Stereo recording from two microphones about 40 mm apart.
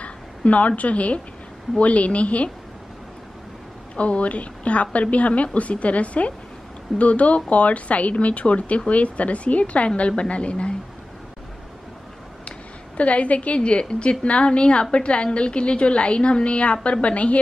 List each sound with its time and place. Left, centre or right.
0.0 s a woman's voice: left
3.9 s a woman's voice: left
12.4 s a sound: left
13.6 s a woman's voice: left